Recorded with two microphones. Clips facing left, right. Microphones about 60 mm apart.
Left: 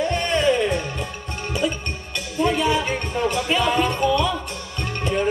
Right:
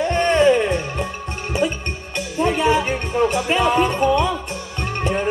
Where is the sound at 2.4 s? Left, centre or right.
Right.